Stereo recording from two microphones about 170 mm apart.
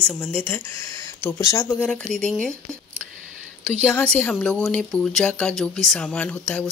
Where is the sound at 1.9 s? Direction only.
5° left (ahead or behind).